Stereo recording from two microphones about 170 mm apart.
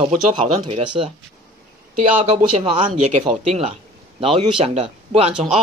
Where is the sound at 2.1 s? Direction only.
45° right (ahead or behind).